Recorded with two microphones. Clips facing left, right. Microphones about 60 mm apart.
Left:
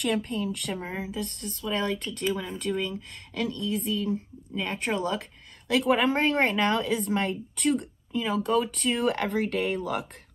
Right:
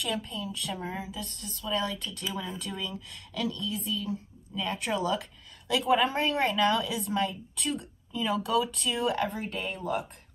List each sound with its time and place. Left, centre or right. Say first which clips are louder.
0.0 s speech: left 6 dB; left